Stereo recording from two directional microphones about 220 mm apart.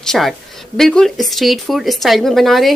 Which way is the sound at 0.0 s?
Centre (ahead or behind).